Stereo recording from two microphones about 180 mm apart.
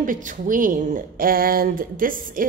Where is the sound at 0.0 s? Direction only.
50° right (ahead or behind).